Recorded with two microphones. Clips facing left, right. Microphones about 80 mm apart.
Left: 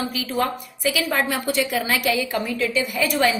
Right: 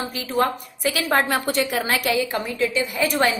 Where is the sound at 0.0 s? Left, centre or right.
Right.